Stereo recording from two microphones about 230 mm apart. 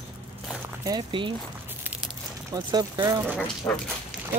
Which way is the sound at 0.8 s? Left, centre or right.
Centre.